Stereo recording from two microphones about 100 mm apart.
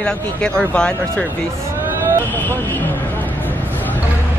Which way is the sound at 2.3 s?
20° left (ahead or behind).